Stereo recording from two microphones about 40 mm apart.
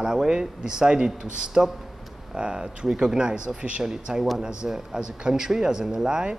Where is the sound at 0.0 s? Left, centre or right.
Centre.